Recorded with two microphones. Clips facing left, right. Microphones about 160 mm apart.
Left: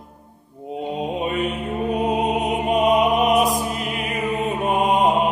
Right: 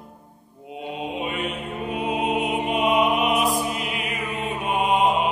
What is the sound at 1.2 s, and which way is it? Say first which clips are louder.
Mantra: left 5 dB; 40° left (ahead or behind).